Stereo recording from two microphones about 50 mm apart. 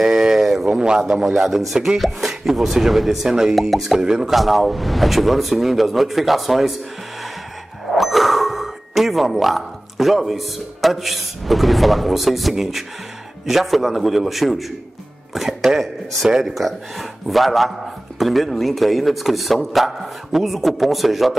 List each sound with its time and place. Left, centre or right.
0.0 s a sound: centre
0.7 s a man's voice: centre
1.0 s a man's voice: centre
4.4 s speech: centre
7.9 s a man's voice: centre
16.5 s speech: centre